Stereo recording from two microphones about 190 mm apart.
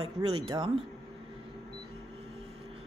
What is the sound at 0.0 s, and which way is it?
Speech, 25° right (ahead or behind).